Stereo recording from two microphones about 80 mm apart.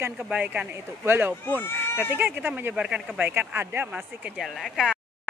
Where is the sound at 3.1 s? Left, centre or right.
Right.